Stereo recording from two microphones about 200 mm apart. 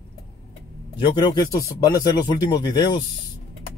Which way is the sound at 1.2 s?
20° left (ahead or behind).